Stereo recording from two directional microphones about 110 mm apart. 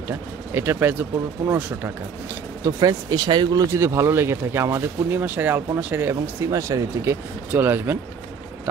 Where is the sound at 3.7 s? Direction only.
25° right (ahead or behind).